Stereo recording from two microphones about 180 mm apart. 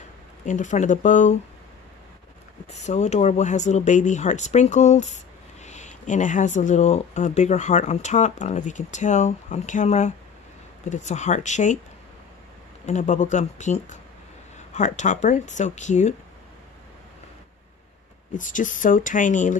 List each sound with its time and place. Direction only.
0.5 s speech: 45° left (ahead or behind)
2.7 s speech: 40° left (ahead or behind)
12.8 s speech: 40° left (ahead or behind)
18.3 s speech: 45° left (ahead or behind)